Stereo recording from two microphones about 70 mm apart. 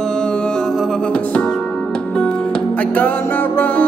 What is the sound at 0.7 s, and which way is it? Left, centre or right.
Music, centre.